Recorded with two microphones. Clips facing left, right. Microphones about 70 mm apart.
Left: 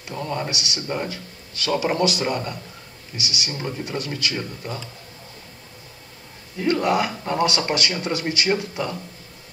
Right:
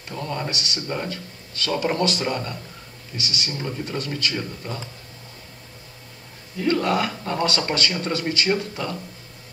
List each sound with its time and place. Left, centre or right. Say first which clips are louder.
0.1 s speech: left 1 dB; centre
6.6 s speech: left 1 dB; centre